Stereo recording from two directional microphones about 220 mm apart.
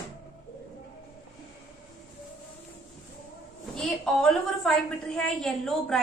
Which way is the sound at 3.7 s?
Centre (ahead or behind).